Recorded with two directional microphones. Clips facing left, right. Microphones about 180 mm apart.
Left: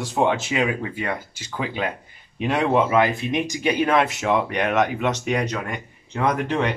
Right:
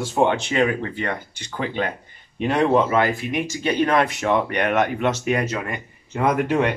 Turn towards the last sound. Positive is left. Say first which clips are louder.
# right 2 dB
turn(degrees=-5)  # may be behind; listen again after turning